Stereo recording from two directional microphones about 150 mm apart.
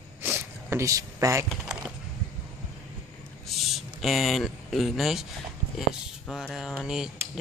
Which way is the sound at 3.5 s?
Centre (ahead or behind).